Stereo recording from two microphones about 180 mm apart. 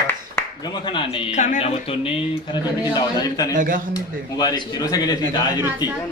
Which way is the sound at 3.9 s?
20° left (ahead or behind).